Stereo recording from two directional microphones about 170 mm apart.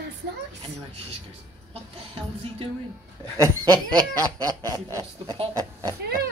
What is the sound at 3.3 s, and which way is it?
Snicker, 25° right (ahead or behind).